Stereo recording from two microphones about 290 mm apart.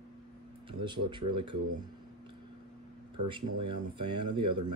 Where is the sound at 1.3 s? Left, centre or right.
Right.